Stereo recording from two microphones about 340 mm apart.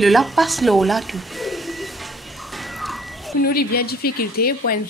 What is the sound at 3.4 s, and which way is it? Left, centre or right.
A man's voice, left.